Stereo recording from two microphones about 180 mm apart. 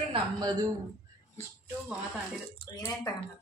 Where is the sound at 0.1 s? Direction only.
25° right (ahead or behind).